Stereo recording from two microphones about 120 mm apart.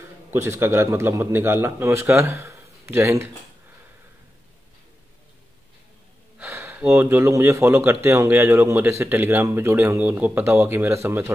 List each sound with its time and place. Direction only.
0.3 s speech: 20° right (ahead or behind)
6.4 s speech: 20° right (ahead or behind)